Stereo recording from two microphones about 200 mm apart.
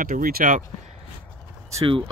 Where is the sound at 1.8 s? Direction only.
25° right (ahead or behind).